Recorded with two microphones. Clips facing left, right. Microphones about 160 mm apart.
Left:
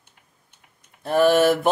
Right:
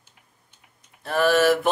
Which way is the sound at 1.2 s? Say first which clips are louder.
Left 2 dB; 40° left (ahead or behind).